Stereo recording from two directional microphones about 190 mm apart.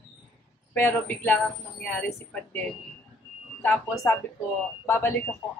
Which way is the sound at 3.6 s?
15° left (ahead or behind).